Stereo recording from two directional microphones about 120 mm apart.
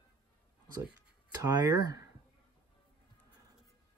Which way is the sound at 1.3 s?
30° right (ahead or behind).